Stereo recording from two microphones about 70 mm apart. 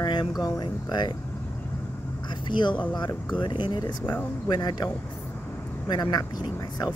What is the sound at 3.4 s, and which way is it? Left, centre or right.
Speech, left.